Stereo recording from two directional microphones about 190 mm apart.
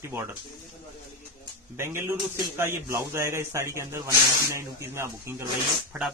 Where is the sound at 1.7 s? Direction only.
15° right (ahead or behind).